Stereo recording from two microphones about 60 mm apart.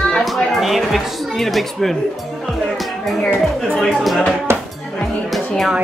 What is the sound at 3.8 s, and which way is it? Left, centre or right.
Speech, centre.